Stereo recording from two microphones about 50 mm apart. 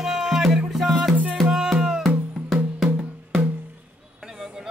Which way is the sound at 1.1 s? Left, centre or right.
Right.